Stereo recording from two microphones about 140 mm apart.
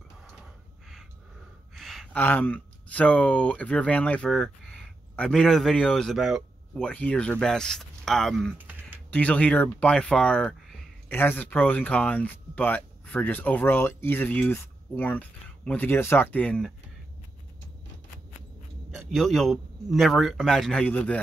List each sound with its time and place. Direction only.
1.8 s gasp: centre (ahead or behind)
2.1 s speech: 10° left (ahead or behind)
6.8 s speech: 10° left (ahead or behind)
8.5 s a sound: 15° right (ahead or behind)
9.1 s speech: 10° left (ahead or behind)
18.9 s speech: centre (ahead or behind)